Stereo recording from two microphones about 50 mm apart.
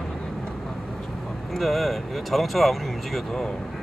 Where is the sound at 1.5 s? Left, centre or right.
Centre.